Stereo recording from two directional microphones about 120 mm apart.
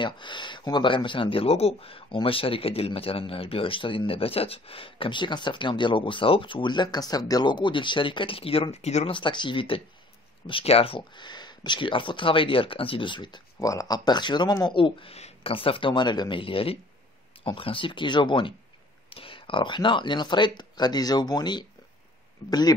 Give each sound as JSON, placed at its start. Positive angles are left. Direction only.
{"t": 0.0, "sound": "speech", "side_deg": 40}
{"t": 9.1, "sound": "speech", "side_deg": 40}